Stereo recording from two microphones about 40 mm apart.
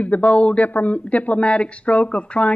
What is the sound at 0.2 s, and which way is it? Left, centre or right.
Speech, left.